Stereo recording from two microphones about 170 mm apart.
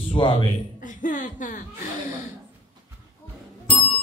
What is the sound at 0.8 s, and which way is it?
Chuckle, 50° left (ahead or behind).